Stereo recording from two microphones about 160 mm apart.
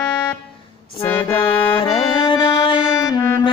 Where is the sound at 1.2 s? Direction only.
35° left (ahead or behind).